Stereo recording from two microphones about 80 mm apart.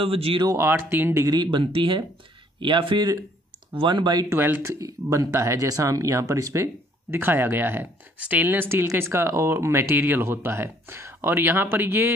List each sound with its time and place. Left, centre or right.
0.0 s speech: right
0.6 s speech: right
1.2 s speech: right
4.3 s speech: right